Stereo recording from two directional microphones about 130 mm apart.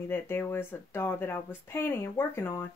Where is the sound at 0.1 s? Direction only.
15° left (ahead or behind).